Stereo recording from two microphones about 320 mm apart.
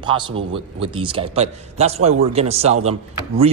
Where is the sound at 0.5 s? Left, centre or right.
Centre.